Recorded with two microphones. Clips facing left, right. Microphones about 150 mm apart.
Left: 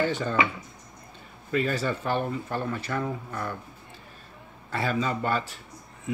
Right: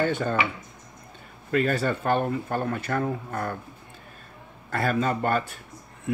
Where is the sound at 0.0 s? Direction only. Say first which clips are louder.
Right 2 dB; 50° right (ahead or behind).